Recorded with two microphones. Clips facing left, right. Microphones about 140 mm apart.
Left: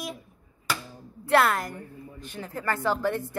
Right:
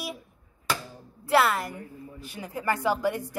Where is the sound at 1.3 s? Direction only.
5° right (ahead or behind).